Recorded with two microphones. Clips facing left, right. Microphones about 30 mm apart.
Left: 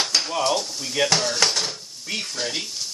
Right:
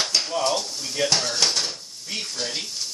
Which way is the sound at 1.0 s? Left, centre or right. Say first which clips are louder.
Left 2 dB; left.